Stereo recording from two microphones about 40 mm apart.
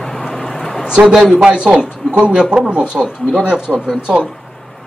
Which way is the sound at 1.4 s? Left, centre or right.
Right.